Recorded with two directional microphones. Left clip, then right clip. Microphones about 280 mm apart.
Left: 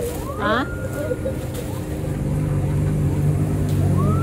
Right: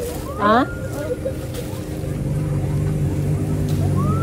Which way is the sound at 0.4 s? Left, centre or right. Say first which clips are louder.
Right 5 dB; centre.